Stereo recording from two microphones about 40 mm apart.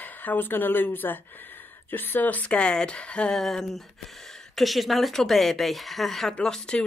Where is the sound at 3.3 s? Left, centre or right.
Centre.